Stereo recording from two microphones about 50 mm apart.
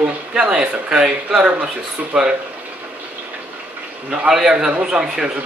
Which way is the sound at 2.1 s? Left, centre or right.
Right.